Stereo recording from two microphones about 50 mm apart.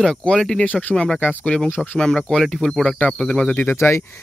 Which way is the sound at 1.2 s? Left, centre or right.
Left.